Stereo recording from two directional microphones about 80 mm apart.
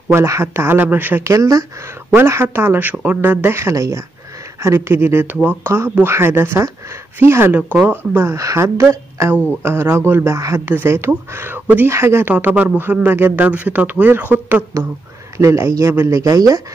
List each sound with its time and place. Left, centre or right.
0.1 s speech: right
1.2 s speech: right
2.1 s speech: right
8.0 s speech: right
15.3 s speech: right